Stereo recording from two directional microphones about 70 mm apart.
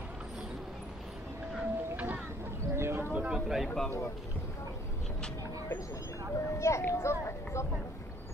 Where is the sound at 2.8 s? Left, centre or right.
Right.